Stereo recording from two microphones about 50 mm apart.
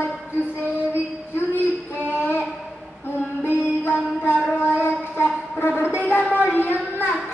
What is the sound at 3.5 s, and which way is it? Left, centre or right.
Music, left.